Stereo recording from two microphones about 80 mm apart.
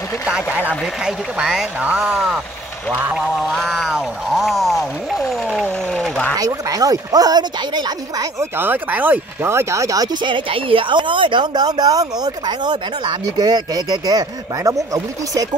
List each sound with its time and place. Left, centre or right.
0.3 s speech: centre
3.2 s a sound: centre
5.9 s a sound: centre
6.3 s speech: right
8.4 s speech: right
10.2 s speech: right